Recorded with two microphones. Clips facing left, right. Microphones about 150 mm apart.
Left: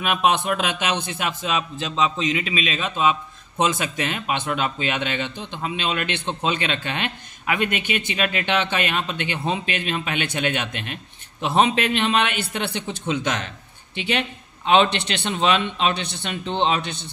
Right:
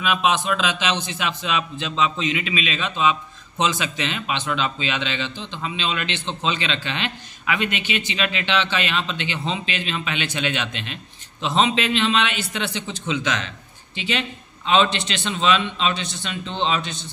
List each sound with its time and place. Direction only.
0.0 s a man's voice: 60° left (ahead or behind)